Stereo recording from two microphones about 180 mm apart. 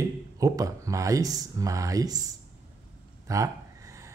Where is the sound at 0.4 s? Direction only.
20° right (ahead or behind).